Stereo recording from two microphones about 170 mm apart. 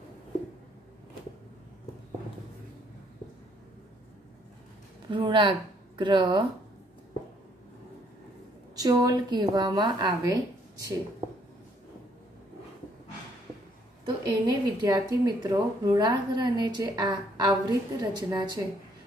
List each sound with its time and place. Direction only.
5.1 s speech: 30° right (ahead or behind)
8.7 s a woman's voice: 20° right (ahead or behind)
14.0 s a woman's voice: 25° right (ahead or behind)